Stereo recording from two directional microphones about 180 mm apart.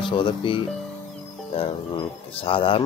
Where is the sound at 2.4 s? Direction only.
30° left (ahead or behind).